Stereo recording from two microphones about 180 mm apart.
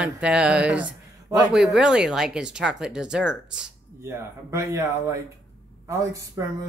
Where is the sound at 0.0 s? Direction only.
5° right (ahead or behind).